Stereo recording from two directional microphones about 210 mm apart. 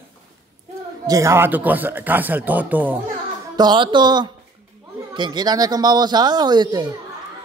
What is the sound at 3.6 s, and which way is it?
Speech, 20° right (ahead or behind).